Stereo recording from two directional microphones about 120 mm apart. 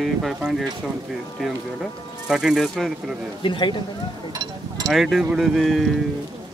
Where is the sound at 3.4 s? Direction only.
45° left (ahead or behind).